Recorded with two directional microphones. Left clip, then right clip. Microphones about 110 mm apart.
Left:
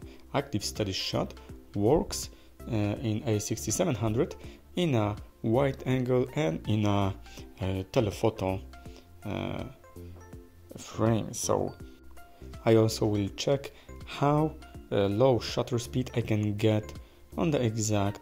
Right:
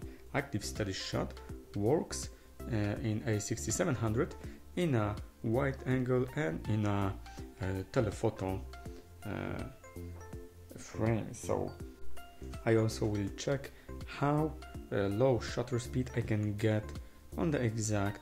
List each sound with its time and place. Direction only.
0.3 s speech: 45° left (ahead or behind)
1.8 s speech: 55° left (ahead or behind)
5.4 s speech: 70° left (ahead or behind); by 9.6 s 50° left (ahead or behind)
10.8 s speech: 65° left (ahead or behind)
12.6 s speech: 60° left (ahead or behind)